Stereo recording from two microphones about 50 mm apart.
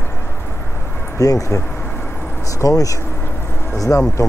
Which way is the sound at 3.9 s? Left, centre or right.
Left.